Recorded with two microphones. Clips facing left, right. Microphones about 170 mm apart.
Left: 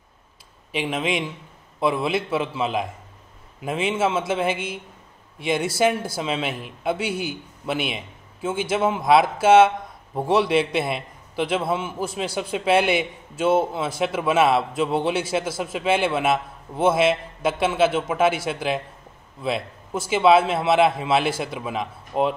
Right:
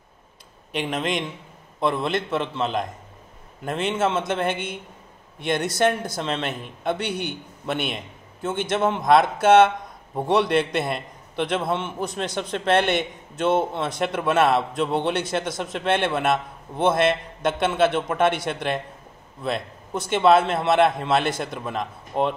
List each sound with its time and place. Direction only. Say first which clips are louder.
0.7 s a man's voice: left 1 dB; centre (ahead or behind)